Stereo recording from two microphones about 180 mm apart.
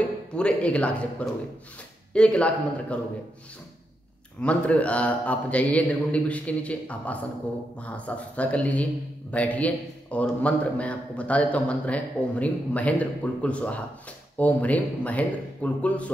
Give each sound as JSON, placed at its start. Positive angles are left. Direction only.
{"t": 0.4, "sound": "a man's voice", "side_deg": 5}
{"t": 4.4, "sound": "a man's voice", "side_deg": 5}